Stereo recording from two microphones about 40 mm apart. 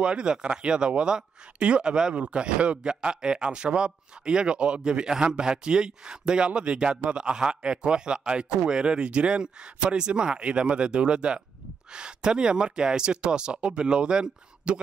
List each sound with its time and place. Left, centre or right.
0.0 s a man's voice: right